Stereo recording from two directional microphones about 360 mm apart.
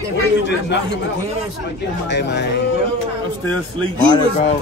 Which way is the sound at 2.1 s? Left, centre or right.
Left.